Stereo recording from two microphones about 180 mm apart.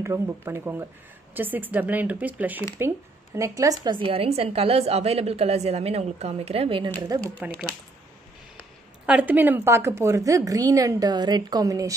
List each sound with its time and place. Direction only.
0.0 s a woman's voice: 15° right (ahead or behind); by 6.9 s 30° right (ahead or behind)
7.1 s speech: 20° right (ahead or behind)
9.0 s a woman's voice: 10° right (ahead or behind)